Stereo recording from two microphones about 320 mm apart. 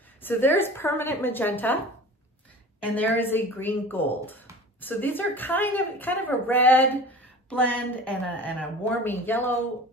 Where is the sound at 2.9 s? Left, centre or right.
Centre.